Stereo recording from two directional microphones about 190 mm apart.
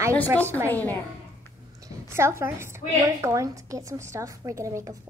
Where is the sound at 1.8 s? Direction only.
15° right (ahead or behind).